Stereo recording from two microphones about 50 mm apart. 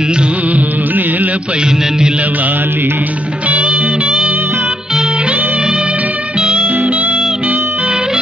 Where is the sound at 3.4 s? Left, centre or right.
Right.